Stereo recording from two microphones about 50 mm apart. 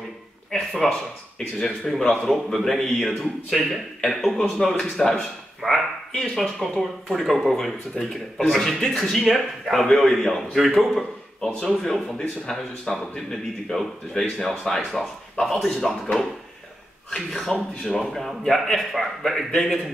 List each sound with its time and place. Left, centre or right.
0.5 s a sound: centre
1.4 s a man's voice: centre
8.0 s a man's voice: centre